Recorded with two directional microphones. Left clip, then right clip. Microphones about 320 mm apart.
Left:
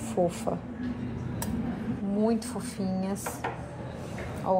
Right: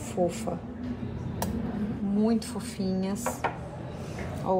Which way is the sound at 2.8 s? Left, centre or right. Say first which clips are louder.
Right 2 dB; centre.